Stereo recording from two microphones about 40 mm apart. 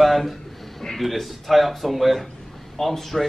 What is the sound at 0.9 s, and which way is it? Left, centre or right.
Speech, centre.